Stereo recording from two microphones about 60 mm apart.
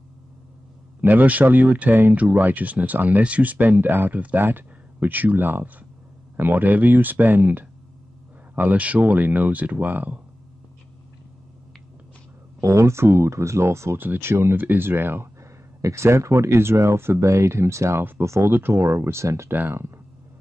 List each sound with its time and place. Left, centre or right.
1.0 s speech: right
12.5 s speech: right
13.9 s speech: right
15.8 s speech: right
17.2 s speech: right
19.5 s speech: right